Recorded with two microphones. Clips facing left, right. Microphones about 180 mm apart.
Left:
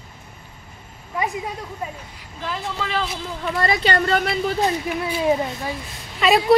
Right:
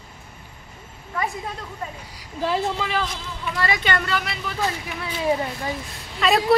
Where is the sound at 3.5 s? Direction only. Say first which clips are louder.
Left 3 dB; 35° left (ahead or behind).